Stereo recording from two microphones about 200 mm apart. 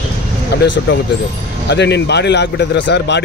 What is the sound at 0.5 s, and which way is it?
A man's voice, 55° left (ahead or behind).